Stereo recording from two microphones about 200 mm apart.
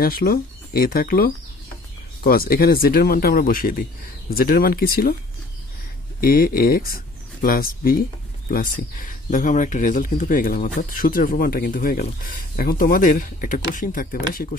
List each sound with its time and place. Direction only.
0.0 s speech: 50° left (ahead or behind)
6.2 s speech: 45° left (ahead or behind)